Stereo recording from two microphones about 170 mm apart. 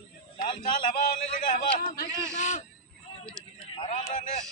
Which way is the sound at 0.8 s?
55° left (ahead or behind).